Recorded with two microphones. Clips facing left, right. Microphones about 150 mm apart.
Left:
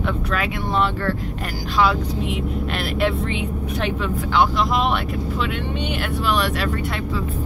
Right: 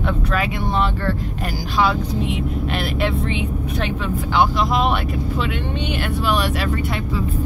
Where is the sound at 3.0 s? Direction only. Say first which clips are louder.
Left 2 dB; centre (ahead or behind).